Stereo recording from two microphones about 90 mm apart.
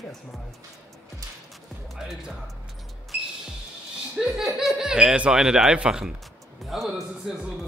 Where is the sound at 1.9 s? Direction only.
5° right (ahead or behind).